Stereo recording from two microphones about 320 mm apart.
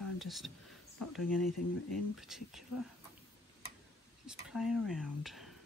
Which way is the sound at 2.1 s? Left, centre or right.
Centre.